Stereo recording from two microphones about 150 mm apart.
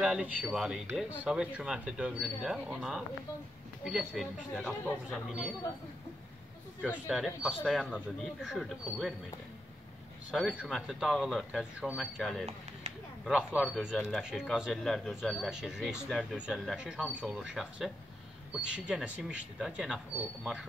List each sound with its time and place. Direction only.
0.0 s speech: 10° right (ahead or behind)
6.9 s speech: 5° right (ahead or behind)
10.3 s speech: 5° right (ahead or behind)
12.9 s a sound: 45° right (ahead or behind)
13.2 s speech: 5° right (ahead or behind)